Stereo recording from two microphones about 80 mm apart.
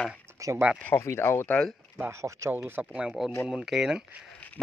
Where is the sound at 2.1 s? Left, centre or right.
Right.